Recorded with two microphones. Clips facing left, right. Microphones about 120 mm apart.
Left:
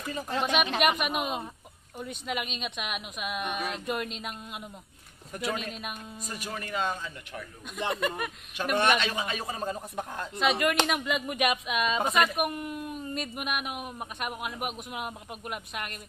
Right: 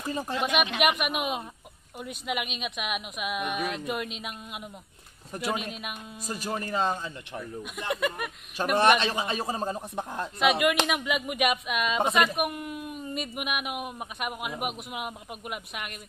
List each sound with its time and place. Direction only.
0.0 s speech: 30° right (ahead or behind)
0.3 s speech: 35° left (ahead or behind)
0.7 s a woman's voice: centre (ahead or behind)
6.2 s speech: 35° right (ahead or behind)
7.9 s a woman's voice: 5° right (ahead or behind)
8.6 s speech: 35° right (ahead or behind)
10.4 s a woman's voice: 5° right (ahead or behind)